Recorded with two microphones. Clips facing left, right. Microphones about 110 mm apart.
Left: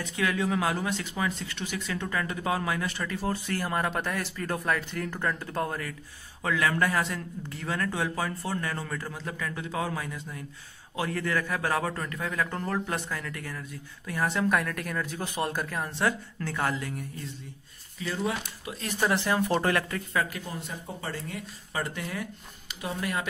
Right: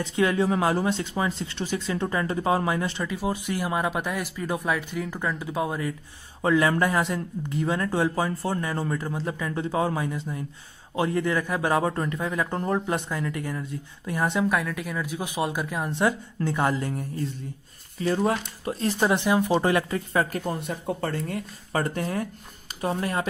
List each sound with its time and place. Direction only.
0.0 s a man's voice: 25° right (ahead or behind)
3.0 s speech: 15° right (ahead or behind)
6.4 s a man's voice: 25° right (ahead or behind)
14.5 s a man's voice: 5° right (ahead or behind); by 16.9 s 20° right (ahead or behind)
17.9 s speech: 45° right (ahead or behind)
18.9 s a man's voice: 20° right (ahead or behind)
20.1 s speech: 35° right (ahead or behind)
20.4 s speech: 55° right (ahead or behind); by 23.2 s 35° right (ahead or behind)